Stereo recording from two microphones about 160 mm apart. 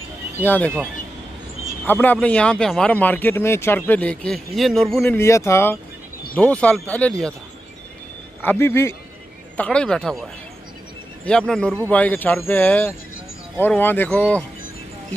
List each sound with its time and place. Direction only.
0.4 s speech: 10° left (ahead or behind)
1.9 s speech: 10° left (ahead or behind)
5.0 s speech: 15° left (ahead or behind)
8.5 s speech: 15° left (ahead or behind)